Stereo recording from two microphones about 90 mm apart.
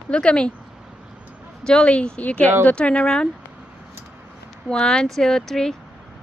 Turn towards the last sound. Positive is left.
turn(degrees=5)  # may be behind; listen again after turning